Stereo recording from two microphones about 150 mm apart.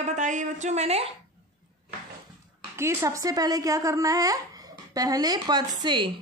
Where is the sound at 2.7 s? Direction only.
20° right (ahead or behind).